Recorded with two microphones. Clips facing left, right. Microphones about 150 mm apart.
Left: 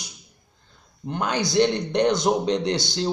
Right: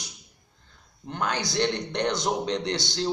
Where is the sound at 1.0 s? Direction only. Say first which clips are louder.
Left 4 dB; 10° left (ahead or behind).